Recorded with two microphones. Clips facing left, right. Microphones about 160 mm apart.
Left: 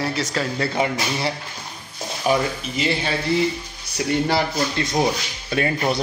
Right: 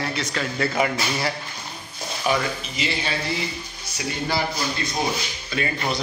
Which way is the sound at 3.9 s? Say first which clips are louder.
Left 6 dB; 70° left (ahead or behind).